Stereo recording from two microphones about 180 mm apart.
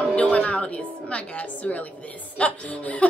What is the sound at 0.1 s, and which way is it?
A woman's voice, 5° left (ahead or behind).